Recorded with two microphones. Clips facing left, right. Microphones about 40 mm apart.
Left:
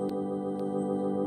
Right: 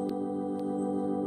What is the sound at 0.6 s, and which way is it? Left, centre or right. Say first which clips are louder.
Music: left 1 dB; left.